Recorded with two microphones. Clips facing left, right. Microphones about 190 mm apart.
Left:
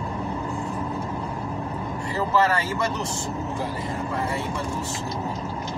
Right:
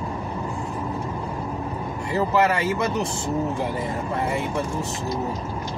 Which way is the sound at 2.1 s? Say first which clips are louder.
Right 2 dB; 15° right (ahead or behind).